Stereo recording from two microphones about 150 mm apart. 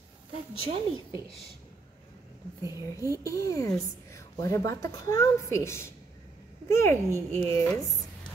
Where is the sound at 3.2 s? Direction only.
20° left (ahead or behind).